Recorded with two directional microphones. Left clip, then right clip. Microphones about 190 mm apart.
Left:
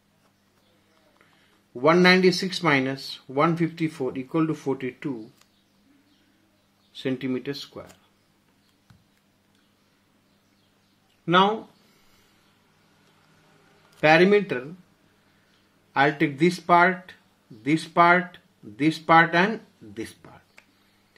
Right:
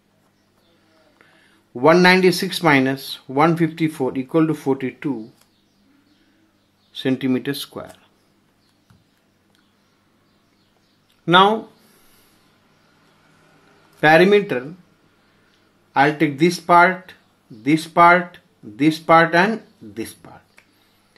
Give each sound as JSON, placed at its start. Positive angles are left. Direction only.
{"t": 1.8, "sound": "speech", "side_deg": -20}
{"t": 7.0, "sound": "speech", "side_deg": -20}
{"t": 11.2, "sound": "speech", "side_deg": -15}
{"t": 14.0, "sound": "speech", "side_deg": -10}
{"t": 15.9, "sound": "speech", "side_deg": -5}